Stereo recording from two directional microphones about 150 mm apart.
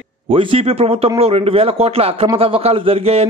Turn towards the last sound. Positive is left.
turn(degrees=-40)  # may be behind; listen again after turning